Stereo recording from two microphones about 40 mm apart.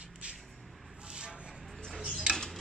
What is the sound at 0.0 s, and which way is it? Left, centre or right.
Vehicle, right.